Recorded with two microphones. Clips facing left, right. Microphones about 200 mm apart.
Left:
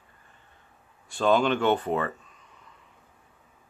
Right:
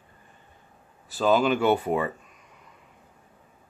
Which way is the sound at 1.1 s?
5° right (ahead or behind).